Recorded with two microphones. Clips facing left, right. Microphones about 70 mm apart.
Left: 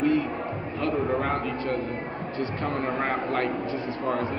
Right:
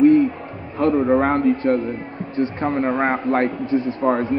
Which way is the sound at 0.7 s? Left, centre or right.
Right.